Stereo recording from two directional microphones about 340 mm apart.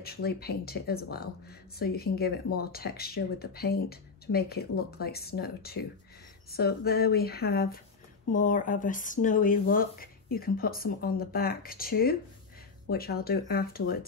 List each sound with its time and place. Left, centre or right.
0.0 s speech: left